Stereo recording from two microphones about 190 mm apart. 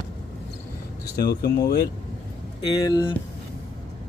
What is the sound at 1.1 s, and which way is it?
Speech, 55° left (ahead or behind).